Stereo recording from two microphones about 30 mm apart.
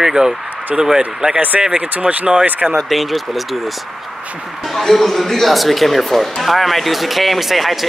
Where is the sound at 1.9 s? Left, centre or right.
Right.